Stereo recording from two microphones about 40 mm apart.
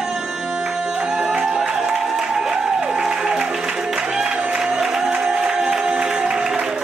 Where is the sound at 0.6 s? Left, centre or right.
Centre.